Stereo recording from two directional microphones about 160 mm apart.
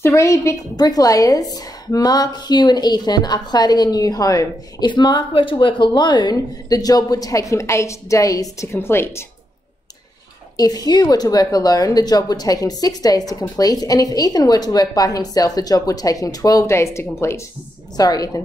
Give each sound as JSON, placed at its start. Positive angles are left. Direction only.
{"t": 0.0, "sound": "a woman's voice", "side_deg": 20}
{"t": 10.6, "sound": "a woman's voice", "side_deg": 25}